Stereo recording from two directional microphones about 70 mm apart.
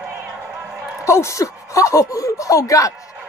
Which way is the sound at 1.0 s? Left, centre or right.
Left.